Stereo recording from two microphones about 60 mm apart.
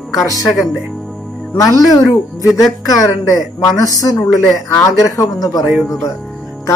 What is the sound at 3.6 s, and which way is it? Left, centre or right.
Speech, left.